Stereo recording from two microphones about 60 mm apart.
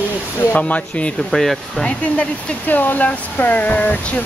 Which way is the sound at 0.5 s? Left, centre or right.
Left.